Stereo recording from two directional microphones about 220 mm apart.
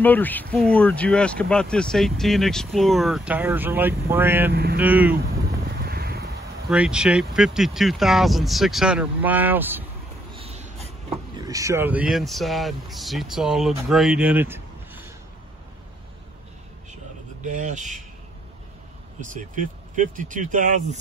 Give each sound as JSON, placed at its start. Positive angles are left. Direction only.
{"t": 0.0, "sound": "speech", "side_deg": 10}
{"t": 4.5, "sound": "speech", "side_deg": -45}
{"t": 4.7, "sound": "speech", "side_deg": -5}
{"t": 5.9, "sound": "crow", "side_deg": -45}
{"t": 6.7, "sound": "speech", "side_deg": -5}
{"t": 10.3, "sound": "train", "side_deg": -30}
{"t": 11.3, "sound": "speech", "side_deg": -15}
{"t": 17.4, "sound": "speech", "side_deg": -35}
{"t": 19.3, "sound": "speech", "side_deg": -35}